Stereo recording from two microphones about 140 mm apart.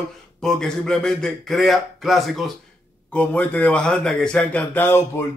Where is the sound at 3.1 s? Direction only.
10° left (ahead or behind).